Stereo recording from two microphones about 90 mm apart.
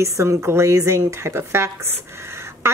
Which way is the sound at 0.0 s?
30° right (ahead or behind).